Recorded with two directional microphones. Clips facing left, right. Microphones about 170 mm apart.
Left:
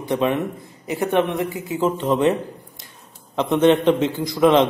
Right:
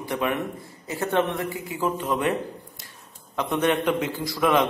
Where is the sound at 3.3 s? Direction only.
25° left (ahead or behind).